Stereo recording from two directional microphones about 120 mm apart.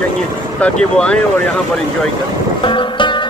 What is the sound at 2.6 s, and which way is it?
Music, 45° left (ahead or behind).